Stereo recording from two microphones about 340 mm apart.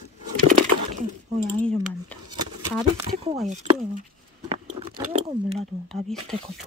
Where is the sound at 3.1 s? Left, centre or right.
Right.